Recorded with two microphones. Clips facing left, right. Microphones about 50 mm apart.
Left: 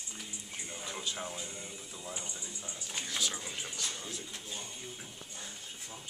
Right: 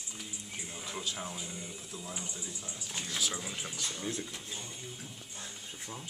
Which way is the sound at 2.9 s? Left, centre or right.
Centre.